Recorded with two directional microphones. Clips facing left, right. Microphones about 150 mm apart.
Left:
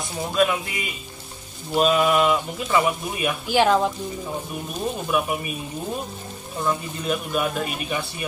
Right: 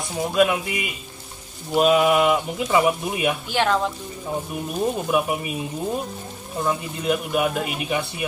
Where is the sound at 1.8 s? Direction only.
10° right (ahead or behind).